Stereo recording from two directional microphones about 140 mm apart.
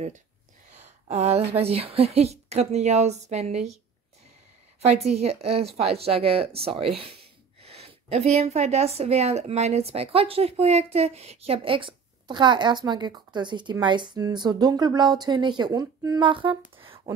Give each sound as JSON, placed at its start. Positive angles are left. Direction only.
{"t": 1.0, "sound": "a woman's voice", "side_deg": -55}
{"t": 4.8, "sound": "a woman's voice", "side_deg": -50}